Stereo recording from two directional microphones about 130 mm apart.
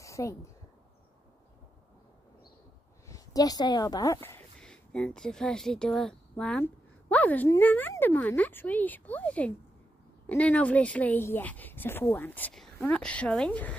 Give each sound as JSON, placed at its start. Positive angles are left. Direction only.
{"t": 0.0, "sound": "a sound", "side_deg": 25}
{"t": 3.1, "sound": "a woman's voice", "side_deg": 30}
{"t": 4.6, "sound": "a woman's voice", "side_deg": 5}